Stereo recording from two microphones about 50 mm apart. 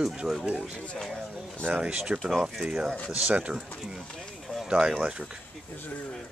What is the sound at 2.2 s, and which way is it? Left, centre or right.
Speech, centre.